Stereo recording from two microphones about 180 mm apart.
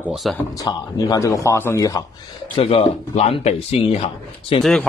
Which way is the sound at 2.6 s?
30° left (ahead or behind).